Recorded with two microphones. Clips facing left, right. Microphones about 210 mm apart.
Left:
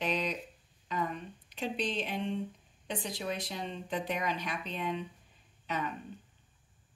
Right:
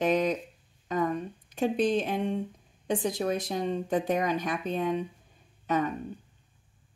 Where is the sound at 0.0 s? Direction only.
45° right (ahead or behind).